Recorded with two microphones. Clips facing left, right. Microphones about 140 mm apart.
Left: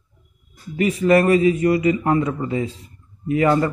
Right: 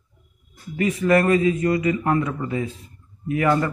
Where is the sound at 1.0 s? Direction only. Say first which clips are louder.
Left 3 dB; 20° left (ahead or behind).